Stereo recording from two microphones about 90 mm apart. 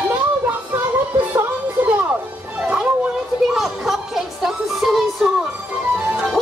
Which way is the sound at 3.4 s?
5° right (ahead or behind).